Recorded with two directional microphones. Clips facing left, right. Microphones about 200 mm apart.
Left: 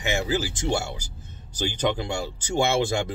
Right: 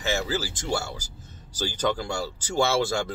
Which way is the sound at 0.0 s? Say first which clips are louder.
Left 2 dB; 15° left (ahead or behind).